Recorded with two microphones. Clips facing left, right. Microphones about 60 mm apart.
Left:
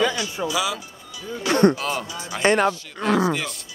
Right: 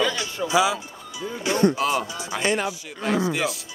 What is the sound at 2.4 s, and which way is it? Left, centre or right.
Speech, left.